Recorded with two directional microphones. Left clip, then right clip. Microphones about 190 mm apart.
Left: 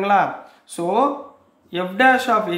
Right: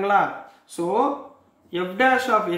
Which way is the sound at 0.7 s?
35° left (ahead or behind).